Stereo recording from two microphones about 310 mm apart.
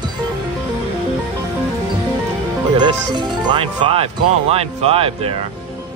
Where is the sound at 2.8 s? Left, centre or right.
Centre.